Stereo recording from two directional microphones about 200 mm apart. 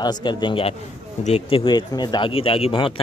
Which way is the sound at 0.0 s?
20° left (ahead or behind).